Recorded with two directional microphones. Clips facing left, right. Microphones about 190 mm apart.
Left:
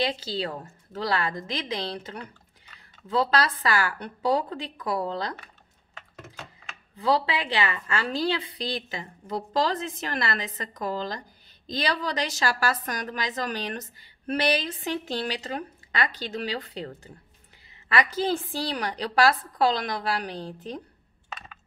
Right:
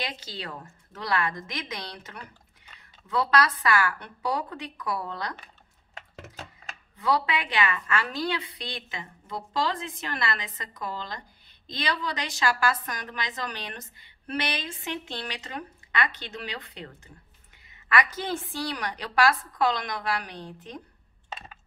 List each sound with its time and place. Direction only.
0.0 s a woman's voice: 30° left (ahead or behind)
7.0 s a woman's voice: 30° left (ahead or behind)